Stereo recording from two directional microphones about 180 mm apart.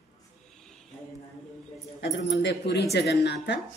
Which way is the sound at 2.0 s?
75° left (ahead or behind).